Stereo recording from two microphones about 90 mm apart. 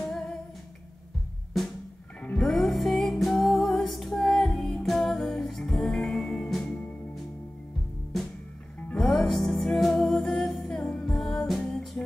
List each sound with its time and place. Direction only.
0.0 s humming: 5° left (ahead or behind)
2.4 s music: centre (ahead or behind)
8.9 s music: 5° left (ahead or behind)